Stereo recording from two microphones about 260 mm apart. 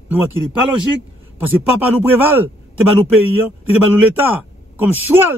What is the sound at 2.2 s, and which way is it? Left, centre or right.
Speech, centre.